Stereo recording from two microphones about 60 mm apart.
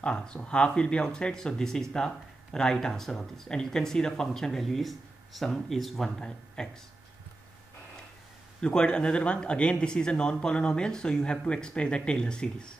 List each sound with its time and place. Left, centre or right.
0.0 s speech: centre
8.5 s speech: centre